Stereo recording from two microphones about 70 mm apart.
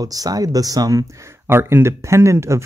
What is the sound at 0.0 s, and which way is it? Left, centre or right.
Speech, right.